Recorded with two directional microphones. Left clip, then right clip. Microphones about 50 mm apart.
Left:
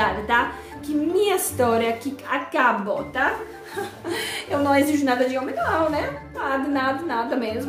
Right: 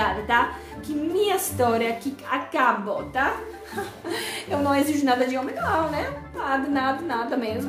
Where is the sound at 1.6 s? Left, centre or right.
Centre.